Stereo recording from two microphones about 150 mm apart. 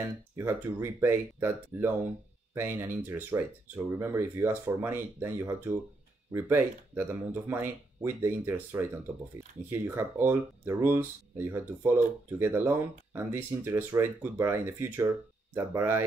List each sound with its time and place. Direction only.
0.0 s speech: 15° right (ahead or behind)